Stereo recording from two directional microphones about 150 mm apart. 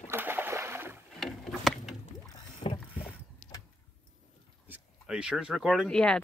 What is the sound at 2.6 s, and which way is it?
Mechanisms, 45° left (ahead or behind).